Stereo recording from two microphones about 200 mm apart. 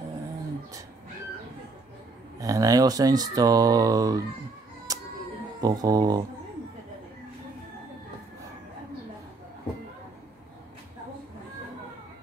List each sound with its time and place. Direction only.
2.4 s speech: 15° right (ahead or behind)
4.9 s music: 15° right (ahead or behind)
5.6 s speech: 20° right (ahead or behind)